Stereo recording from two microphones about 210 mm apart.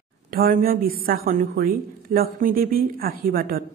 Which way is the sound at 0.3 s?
45° right (ahead or behind).